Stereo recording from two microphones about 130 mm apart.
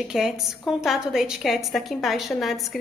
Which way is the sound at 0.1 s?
5° right (ahead or behind).